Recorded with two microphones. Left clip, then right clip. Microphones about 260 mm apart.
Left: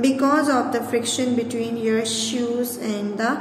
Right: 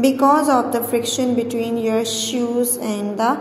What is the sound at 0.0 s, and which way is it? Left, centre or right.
A woman's voice, centre.